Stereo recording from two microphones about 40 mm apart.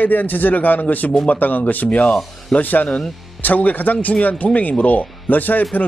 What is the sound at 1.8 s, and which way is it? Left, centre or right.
Speech, left.